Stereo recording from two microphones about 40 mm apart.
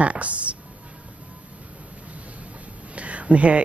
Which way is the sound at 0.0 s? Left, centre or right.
Right.